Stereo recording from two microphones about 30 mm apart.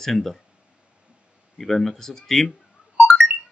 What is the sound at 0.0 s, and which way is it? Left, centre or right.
Speech, centre.